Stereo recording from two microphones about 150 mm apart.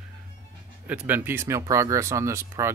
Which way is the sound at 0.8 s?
10° right (ahead or behind).